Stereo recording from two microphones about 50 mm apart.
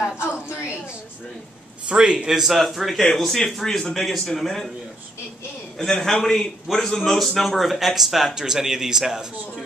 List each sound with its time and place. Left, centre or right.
1.9 s a man's voice: centre
5.8 s a man's voice: centre